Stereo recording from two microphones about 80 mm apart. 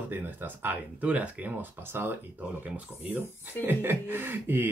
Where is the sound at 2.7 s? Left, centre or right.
Right.